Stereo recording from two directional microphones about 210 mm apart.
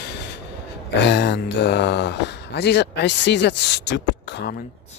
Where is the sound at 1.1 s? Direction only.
55° left (ahead or behind).